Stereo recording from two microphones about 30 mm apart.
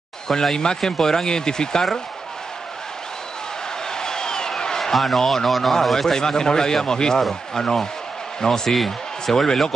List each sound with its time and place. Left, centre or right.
0.3 s a man's voice: centre
3.9 s a sound: left
4.9 s speech: centre
5.2 s a man's voice: centre
6.1 s a man's voice: left